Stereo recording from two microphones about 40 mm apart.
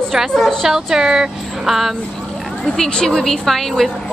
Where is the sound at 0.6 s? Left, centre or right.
Centre.